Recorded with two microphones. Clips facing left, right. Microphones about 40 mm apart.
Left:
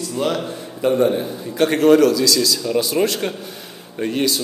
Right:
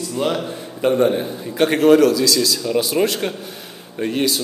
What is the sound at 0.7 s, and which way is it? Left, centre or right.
Speech, right.